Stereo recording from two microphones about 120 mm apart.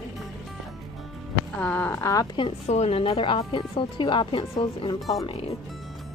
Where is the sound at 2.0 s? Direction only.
30° left (ahead or behind).